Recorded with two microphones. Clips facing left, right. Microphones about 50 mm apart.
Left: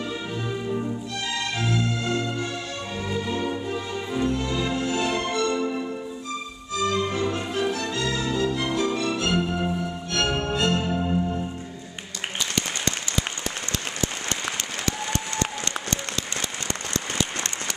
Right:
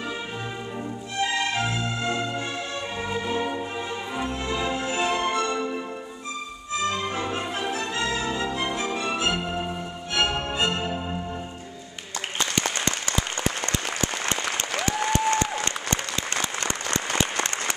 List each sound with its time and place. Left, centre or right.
1.2 s music: right; by 11.4 s centre
15.3 s applause: right